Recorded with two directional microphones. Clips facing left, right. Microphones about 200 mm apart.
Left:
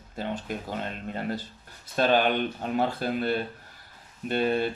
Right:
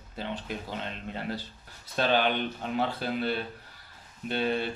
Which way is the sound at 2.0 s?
45° left (ahead or behind).